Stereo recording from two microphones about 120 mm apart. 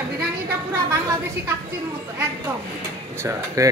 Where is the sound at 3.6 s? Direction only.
25° right (ahead or behind).